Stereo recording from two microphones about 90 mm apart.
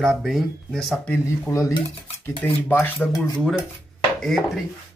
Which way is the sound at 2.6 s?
20° left (ahead or behind).